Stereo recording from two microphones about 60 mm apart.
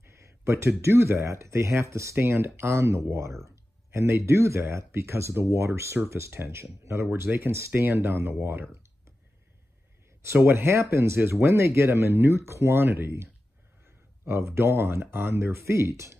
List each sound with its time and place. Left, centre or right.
0.0 s speech: right
7.8 s speech: right
8.1 s speech: right
10.2 s speech: right